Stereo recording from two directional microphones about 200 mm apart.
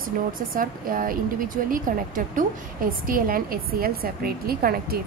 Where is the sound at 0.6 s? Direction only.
45° right (ahead or behind).